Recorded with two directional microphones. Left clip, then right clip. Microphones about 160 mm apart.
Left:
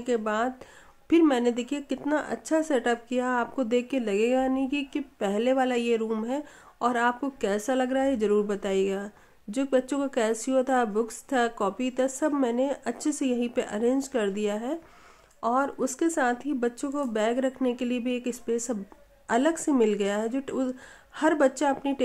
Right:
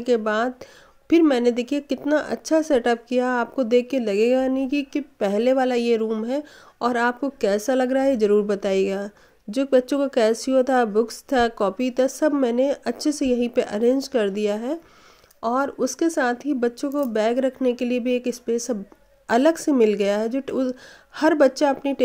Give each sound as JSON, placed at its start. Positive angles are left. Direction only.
{"t": 0.0, "sound": "a woman's voice", "side_deg": -30}